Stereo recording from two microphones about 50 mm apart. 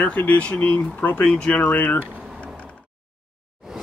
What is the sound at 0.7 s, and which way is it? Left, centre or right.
Speech, left.